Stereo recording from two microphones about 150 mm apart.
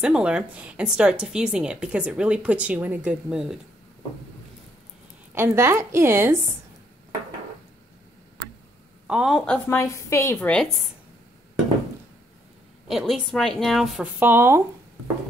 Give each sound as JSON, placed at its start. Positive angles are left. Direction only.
{"t": 0.0, "sound": "a woman's voice", "side_deg": -5}
{"t": 5.3, "sound": "a woman's voice", "side_deg": -15}
{"t": 9.0, "sound": "a woman's voice", "side_deg": -5}
{"t": 9.8, "sound": "a woman's voice", "side_deg": 20}
{"t": 12.8, "sound": "a woman's voice", "side_deg": 0}